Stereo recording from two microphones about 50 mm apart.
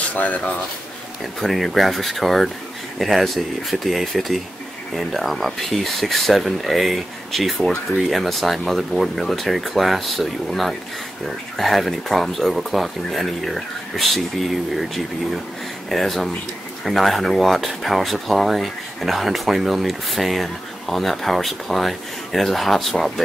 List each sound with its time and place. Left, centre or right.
0.1 s speech: left
1.4 s speech: centre
15.9 s speech: centre